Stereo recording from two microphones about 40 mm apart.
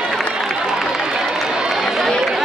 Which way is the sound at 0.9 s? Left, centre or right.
Centre.